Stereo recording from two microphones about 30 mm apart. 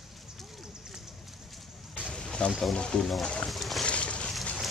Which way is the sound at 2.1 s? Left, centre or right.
Left.